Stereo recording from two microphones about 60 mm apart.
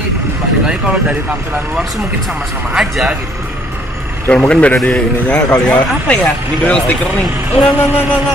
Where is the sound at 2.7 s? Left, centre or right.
Centre.